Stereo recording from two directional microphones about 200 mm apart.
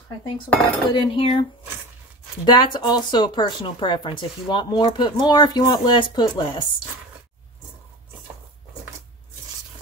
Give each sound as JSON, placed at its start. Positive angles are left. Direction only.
{"t": 0.8, "sound": "speech", "side_deg": 25}
{"t": 2.4, "sound": "speech", "side_deg": 25}